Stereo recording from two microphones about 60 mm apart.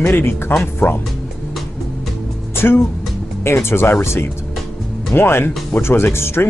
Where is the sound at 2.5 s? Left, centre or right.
Left.